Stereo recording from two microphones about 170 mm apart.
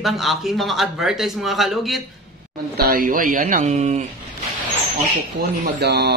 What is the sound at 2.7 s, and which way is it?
Speech, 60° right (ahead or behind).